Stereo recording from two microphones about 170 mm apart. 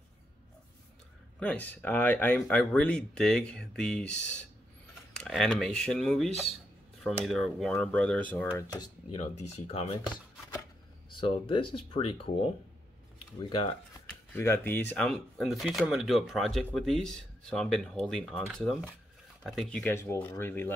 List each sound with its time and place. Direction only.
1.4 s speech: 10° left (ahead or behind)
5.1 s speech: 5° left (ahead or behind)
9.1 s speech: 40° left (ahead or behind)
11.1 s speech: 30° left (ahead or behind)
14.3 s speech: 15° left (ahead or behind)